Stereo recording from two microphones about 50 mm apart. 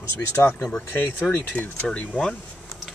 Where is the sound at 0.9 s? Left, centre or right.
Left.